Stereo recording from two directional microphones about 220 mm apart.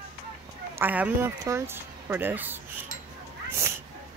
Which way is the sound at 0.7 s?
10° right (ahead or behind).